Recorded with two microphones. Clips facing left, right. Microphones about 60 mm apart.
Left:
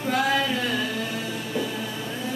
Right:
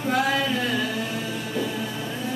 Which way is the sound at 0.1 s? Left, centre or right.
Centre.